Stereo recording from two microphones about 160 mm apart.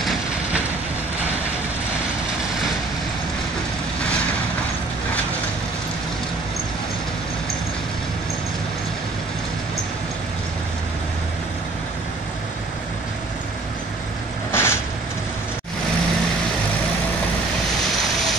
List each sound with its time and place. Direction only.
14.5 s vehicle: 15° left (ahead or behind)